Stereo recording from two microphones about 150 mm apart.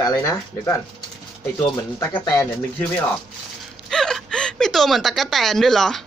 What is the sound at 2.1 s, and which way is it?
Speech, 30° left (ahead or behind).